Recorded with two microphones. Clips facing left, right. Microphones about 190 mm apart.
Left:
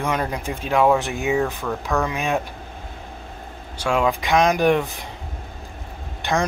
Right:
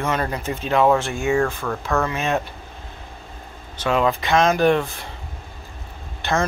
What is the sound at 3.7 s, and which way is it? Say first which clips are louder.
Speech: right 1 dB; 10° left (ahead or behind).